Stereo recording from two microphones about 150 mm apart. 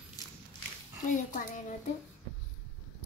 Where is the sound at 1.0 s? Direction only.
60° left (ahead or behind).